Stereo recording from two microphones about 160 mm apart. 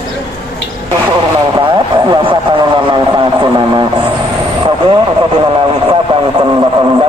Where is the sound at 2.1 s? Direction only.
30° right (ahead or behind).